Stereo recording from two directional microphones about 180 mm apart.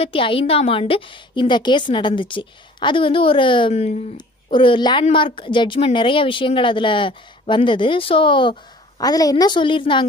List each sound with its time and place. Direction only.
0.0 s speech: 30° left (ahead or behind)